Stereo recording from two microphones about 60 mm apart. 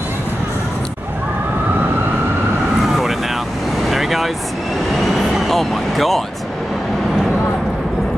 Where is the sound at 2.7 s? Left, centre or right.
Centre.